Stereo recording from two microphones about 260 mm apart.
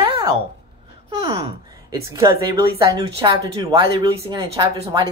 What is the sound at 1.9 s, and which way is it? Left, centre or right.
Speech, centre.